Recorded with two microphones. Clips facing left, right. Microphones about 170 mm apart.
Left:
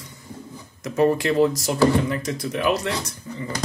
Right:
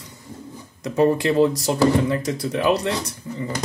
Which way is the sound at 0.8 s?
25° right (ahead or behind).